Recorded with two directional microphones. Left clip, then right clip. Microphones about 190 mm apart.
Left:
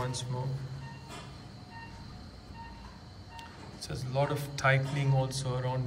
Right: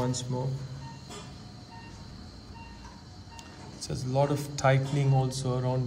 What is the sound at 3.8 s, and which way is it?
Speech, 20° right (ahead or behind).